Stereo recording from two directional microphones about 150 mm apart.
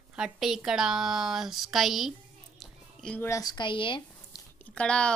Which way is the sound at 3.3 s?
25° left (ahead or behind).